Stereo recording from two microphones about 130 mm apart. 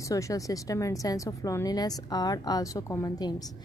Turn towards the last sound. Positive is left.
turn(degrees=30)  # may be behind; listen again after turning